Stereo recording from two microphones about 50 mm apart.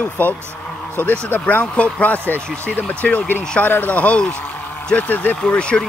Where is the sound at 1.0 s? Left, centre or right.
Left.